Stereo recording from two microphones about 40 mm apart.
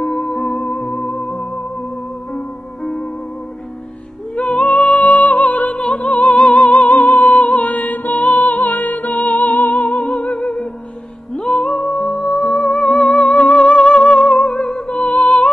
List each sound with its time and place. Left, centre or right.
0.0 s music: centre
0.6 s music: left
2.3 s music: centre
4.4 s music: left
5.8 s music: left
6.1 s music: left
11.3 s music: centre
13.3 s music: left
13.7 s music: left
14.5 s music: centre
14.9 s music: left